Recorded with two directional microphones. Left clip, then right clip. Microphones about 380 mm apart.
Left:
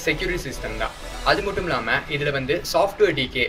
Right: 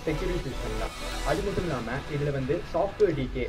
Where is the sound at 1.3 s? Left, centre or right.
Left.